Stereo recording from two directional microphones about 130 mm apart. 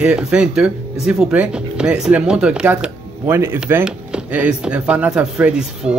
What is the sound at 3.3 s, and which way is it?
Speech, 20° right (ahead or behind).